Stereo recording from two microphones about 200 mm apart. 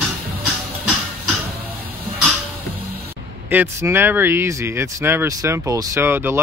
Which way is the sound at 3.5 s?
10° right (ahead or behind).